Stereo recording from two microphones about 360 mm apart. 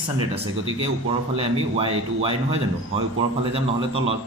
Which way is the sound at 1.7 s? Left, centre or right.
Centre.